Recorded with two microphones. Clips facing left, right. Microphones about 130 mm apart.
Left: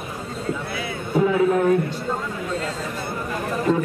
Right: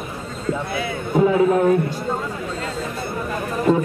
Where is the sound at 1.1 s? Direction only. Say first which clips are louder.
Right 2 dB; 25° right (ahead or behind).